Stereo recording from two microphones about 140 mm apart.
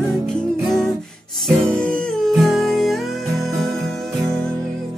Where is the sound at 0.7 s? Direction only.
Centre (ahead or behind).